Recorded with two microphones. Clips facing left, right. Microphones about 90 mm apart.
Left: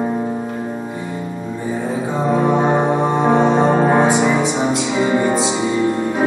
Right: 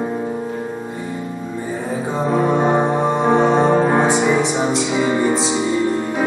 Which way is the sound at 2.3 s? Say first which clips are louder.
Left 1 dB; 15° left (ahead or behind).